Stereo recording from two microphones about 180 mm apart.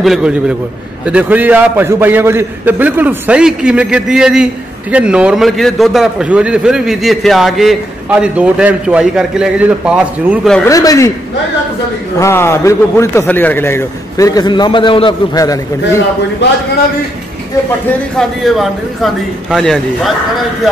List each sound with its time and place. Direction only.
0.0 s a man's voice: 5° right (ahead or behind)
10.6 s speech: 20° left (ahead or behind)
12.2 s a man's voice: 15° left (ahead or behind)
18.1 s a man's voice: centre (ahead or behind)